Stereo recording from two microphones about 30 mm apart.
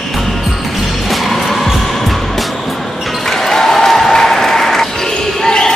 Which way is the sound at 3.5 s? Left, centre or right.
Centre.